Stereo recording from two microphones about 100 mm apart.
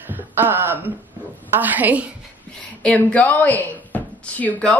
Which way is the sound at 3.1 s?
15° left (ahead or behind).